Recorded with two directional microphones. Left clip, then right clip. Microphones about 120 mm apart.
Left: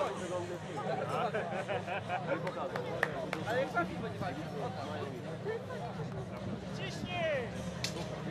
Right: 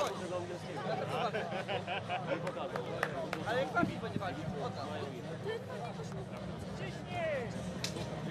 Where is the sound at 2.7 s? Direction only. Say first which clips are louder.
Left 2 dB; 10° right (ahead or behind).